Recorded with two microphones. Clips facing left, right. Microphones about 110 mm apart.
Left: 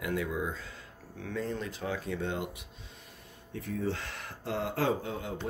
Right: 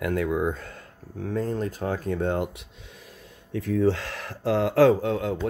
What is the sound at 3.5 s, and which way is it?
Speech, 90° right.